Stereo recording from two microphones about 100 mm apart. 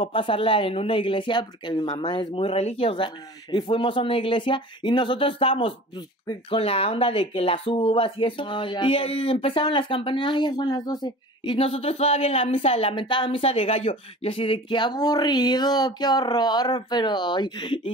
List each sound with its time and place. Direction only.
0.0 s a woman's voice: 60° left (ahead or behind)
5.9 s speech: 45° left (ahead or behind)
6.6 s a woman's voice: 75° left (ahead or behind); by 11.5 s 45° left (ahead or behind)
11.5 s a woman's voice: 70° left (ahead or behind)